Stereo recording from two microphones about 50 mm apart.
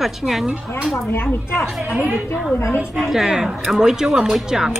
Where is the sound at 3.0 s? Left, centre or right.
Centre.